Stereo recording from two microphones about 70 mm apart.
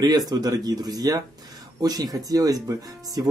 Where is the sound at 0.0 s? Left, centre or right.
Right.